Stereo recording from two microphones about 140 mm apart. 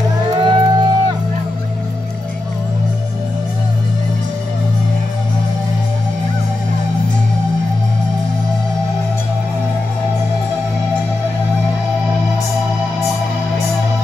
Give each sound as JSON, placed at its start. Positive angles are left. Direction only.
{"t": 0.4, "sound": "music", "side_deg": -30}